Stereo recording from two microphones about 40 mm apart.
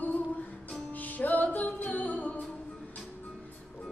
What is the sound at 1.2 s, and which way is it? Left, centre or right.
Music, left.